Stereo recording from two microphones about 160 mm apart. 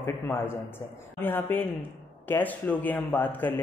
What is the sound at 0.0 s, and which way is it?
Speech, 15° left (ahead or behind).